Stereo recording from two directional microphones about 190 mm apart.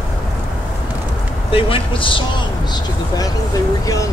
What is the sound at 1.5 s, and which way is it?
Speech, 30° left (ahead or behind).